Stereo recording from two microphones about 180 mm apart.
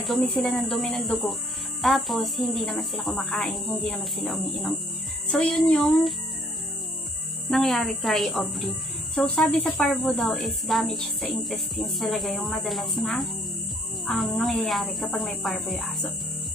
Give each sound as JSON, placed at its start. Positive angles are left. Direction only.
{"t": 0.0, "sound": "speech", "side_deg": 0}
{"t": 7.4, "sound": "speech", "side_deg": 0}